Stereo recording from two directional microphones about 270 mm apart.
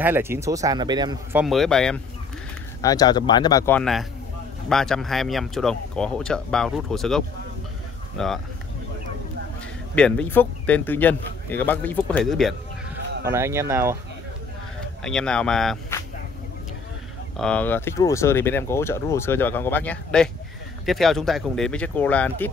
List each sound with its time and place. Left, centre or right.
0.0 s speech: centre
1.4 s speech: centre
2.8 s speech: centre
9.9 s speech: centre
13.3 s speech: centre
15.0 s speech: centre
17.4 s speech: centre